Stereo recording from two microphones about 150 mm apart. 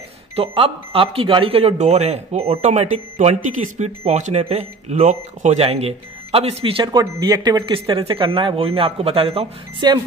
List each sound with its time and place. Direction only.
0.4 s speech: 40° right (ahead or behind)